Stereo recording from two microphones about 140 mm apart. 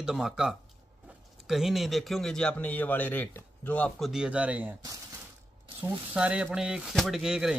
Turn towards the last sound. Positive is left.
turn(degrees=-5)  # may be behind; listen again after turning